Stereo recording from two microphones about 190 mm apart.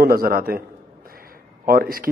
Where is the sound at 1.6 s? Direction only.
50° right (ahead or behind).